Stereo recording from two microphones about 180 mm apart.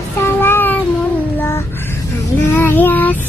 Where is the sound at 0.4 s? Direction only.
10° left (ahead or behind).